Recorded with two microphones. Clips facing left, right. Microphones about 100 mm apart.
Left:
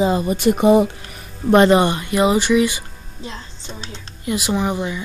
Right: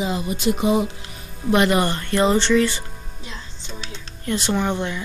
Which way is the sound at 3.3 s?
35° left (ahead or behind).